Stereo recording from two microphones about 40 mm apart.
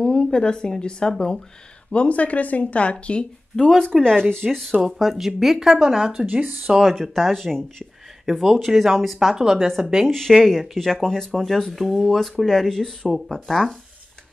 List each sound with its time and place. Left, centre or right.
0.0 s speech: left
1.9 s speech: left
3.5 s speech: centre
4.8 s speech: centre
6.2 s speech: right
6.8 s speech: centre
9.3 s speech: centre
10.0 s speech: centre